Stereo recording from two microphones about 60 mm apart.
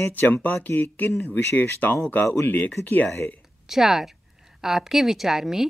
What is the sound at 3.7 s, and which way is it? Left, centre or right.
A woman's voice, centre.